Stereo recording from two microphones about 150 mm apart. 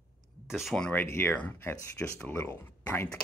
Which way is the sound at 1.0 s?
15° left (ahead or behind).